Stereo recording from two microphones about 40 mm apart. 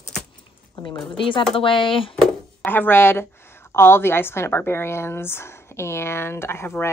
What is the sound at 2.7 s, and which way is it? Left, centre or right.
Speech, left.